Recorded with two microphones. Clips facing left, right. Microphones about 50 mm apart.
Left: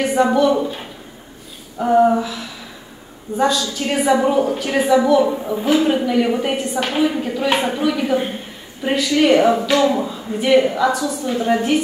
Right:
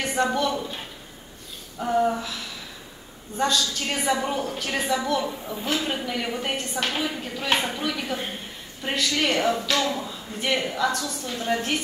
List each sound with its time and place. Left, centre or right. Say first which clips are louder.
0.0 s a woman's voice: left 9 dB; centre
5.3 s a woman's voice: left 10 dB; left
5.7 s a woman's voice: left 11 dB; centre